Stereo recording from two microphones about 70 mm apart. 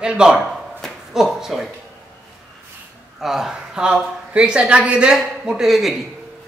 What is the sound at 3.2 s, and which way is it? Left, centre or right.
Speech, centre.